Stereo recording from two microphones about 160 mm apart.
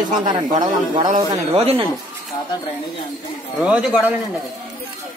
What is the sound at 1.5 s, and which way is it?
Speech, 40° right (ahead or behind).